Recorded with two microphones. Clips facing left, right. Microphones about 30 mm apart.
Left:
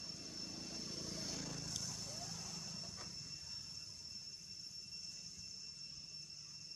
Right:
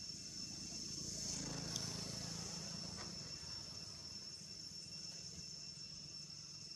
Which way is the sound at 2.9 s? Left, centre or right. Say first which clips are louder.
Right 1 dB; centre.